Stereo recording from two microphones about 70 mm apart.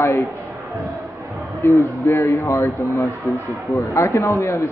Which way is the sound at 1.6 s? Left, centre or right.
Left.